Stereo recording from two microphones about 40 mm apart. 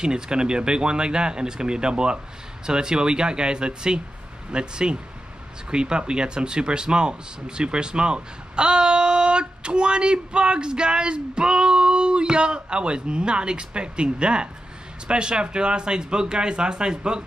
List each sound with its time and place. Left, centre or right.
0.0 s speech: right